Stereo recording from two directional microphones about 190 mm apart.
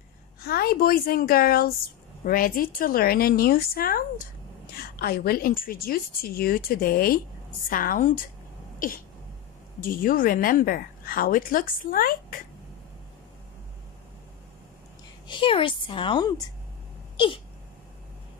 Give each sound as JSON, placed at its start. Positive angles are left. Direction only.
{"t": 0.5, "sound": "a woman's voice", "side_deg": 55}
{"t": 8.7, "sound": "a sound", "side_deg": 45}
{"t": 9.8, "sound": "a woman's voice", "side_deg": 45}
{"t": 15.2, "sound": "a woman's voice", "side_deg": 25}